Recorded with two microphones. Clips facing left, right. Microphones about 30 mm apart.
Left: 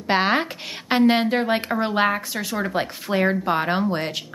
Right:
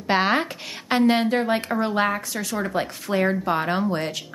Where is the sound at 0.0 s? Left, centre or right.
Centre.